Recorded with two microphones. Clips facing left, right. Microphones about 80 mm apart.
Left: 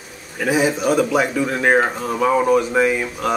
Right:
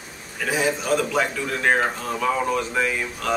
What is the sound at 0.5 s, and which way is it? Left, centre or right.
Speech, centre.